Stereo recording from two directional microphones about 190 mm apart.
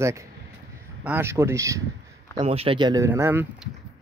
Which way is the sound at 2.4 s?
30° right (ahead or behind).